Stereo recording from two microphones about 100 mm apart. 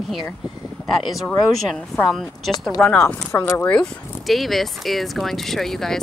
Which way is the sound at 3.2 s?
25° left (ahead or behind).